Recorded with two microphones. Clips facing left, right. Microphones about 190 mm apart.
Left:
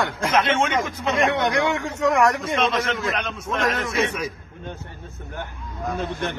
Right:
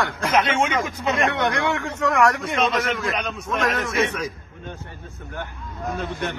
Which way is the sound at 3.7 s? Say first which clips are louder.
Right 1 dB; 15° left (ahead or behind).